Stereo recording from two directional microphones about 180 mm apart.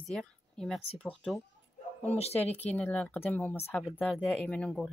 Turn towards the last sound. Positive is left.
turn(degrees=5)  # may be behind; listen again after turning